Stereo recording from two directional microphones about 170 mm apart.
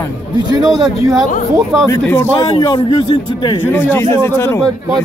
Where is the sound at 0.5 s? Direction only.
20° right (ahead or behind).